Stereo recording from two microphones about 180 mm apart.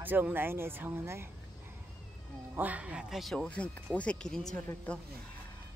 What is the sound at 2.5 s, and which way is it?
A woman's voice, 10° right (ahead or behind).